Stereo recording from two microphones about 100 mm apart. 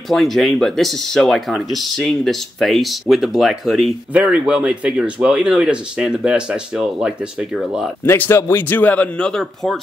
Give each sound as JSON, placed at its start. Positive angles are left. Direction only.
{"t": 0.1, "sound": "speech", "side_deg": 0}
{"t": 8.0, "sound": "a man's voice", "side_deg": 25}